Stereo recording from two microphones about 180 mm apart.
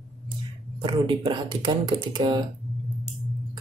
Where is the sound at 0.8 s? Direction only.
30° right (ahead or behind).